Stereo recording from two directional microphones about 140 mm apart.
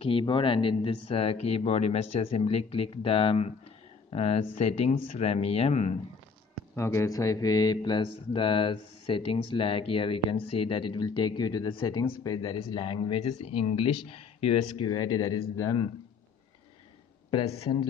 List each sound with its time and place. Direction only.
0.0 s speech: 40° left (ahead or behind)
6.7 s speech: 20° left (ahead or behind); by 13.2 s 35° left (ahead or behind)
13.2 s speech: 50° left (ahead or behind)
14.9 s speech: 25° left (ahead or behind)
17.5 s speech: 40° left (ahead or behind)